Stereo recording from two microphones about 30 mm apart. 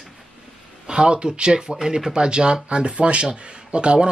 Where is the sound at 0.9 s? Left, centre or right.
Right.